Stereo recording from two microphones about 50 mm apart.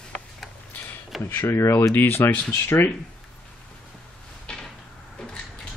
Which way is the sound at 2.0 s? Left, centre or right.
Left.